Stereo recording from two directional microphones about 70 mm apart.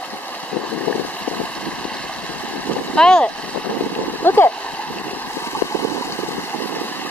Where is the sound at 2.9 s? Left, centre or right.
Centre.